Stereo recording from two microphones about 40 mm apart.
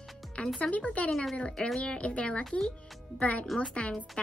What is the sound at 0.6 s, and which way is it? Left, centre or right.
A woman's voice, left.